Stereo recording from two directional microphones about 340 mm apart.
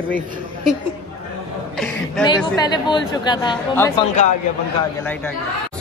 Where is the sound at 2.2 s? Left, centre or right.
Centre.